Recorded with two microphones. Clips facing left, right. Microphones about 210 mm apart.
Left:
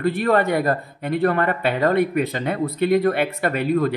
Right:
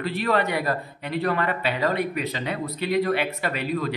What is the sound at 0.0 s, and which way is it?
Speech, 50° left (ahead or behind).